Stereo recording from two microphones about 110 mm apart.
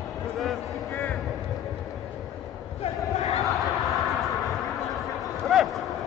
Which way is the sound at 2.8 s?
70° left (ahead or behind).